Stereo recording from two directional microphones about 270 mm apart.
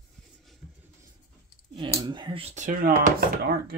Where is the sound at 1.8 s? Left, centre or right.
Centre.